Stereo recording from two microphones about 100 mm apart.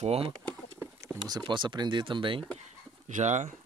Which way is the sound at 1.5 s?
50° right (ahead or behind).